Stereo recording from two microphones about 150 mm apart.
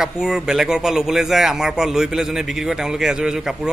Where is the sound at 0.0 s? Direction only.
5° right (ahead or behind).